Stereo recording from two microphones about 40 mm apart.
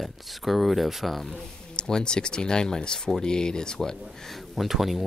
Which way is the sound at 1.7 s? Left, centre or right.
Centre.